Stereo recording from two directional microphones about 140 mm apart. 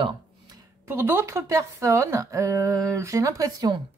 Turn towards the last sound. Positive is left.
turn(degrees=-25)  # may be behind; listen again after turning